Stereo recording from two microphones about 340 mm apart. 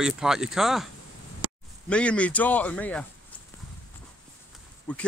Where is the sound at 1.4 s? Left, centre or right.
Right.